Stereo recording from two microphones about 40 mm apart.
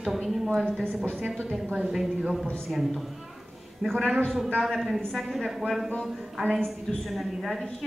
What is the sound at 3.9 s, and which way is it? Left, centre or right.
A woman's voice, centre.